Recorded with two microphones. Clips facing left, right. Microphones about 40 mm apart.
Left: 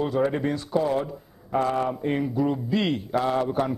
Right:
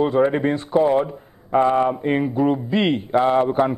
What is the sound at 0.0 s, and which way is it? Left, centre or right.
Speech, right.